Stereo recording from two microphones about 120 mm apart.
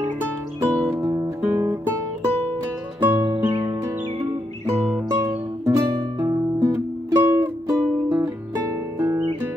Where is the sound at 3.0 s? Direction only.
20° right (ahead or behind).